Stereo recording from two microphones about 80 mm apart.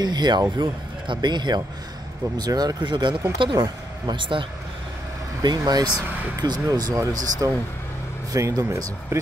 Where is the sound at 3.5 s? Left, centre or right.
Right.